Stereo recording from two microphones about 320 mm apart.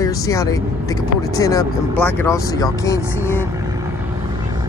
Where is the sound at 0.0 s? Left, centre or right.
Centre.